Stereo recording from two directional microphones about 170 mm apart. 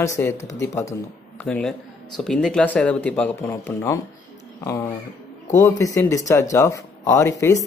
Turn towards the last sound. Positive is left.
turn(degrees=15)  # may be behind; listen again after turning